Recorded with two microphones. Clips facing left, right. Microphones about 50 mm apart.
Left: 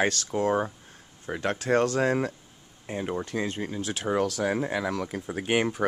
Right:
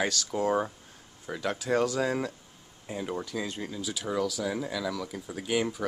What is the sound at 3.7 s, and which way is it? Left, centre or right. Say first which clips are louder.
Speech: left 3 dB; left.